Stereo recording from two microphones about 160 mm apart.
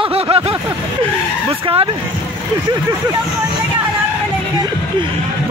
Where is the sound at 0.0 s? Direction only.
35° right (ahead or behind).